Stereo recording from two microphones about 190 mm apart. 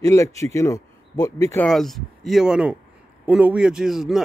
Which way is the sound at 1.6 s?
Centre (ahead or behind).